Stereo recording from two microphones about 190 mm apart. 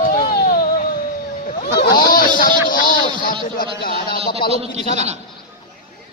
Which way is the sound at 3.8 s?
55° left (ahead or behind).